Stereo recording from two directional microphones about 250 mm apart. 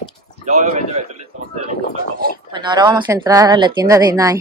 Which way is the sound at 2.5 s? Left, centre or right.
Centre.